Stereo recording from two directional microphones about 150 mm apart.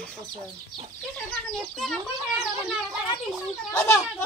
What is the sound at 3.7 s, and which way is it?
Speech, 15° left (ahead or behind).